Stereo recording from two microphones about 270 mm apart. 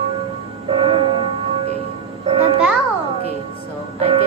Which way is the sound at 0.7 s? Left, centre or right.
Right.